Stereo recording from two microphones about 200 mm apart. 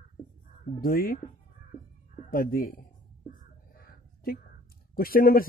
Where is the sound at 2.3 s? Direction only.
45° left (ahead or behind).